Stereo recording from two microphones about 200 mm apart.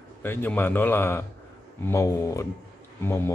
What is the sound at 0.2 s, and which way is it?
Speech, 10° left (ahead or behind).